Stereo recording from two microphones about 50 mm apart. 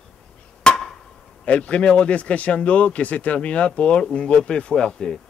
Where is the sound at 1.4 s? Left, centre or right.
Left.